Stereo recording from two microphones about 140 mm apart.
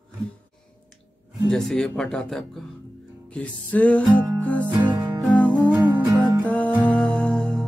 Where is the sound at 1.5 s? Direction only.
5° left (ahead or behind).